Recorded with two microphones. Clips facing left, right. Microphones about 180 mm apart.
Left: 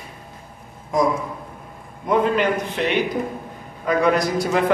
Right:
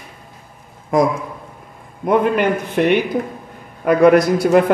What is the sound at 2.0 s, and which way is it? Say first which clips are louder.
A man's voice: right 3 dB; 55° right (ahead or behind).